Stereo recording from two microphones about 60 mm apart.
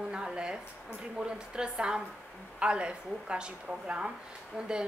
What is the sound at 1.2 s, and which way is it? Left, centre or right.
Speech, centre.